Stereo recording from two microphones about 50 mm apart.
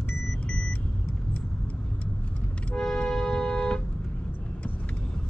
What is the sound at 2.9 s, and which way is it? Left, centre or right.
Music, centre.